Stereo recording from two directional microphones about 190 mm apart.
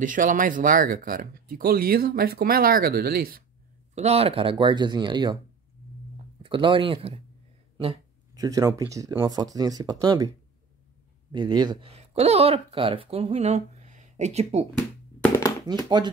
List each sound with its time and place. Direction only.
0.0 s speech: 45° right (ahead or behind)
3.9 s speech: 35° right (ahead or behind)
6.4 s speech: 25° right (ahead or behind)
8.4 s speech: 20° right (ahead or behind)
11.3 s speech: 25° right (ahead or behind)